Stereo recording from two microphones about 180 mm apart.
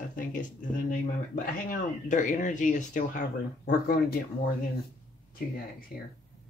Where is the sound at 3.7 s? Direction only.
55° left (ahead or behind).